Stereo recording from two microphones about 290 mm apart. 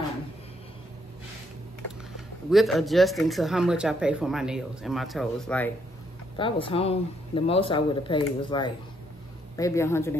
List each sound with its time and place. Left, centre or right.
2.5 s speech: centre
6.3 s speech: centre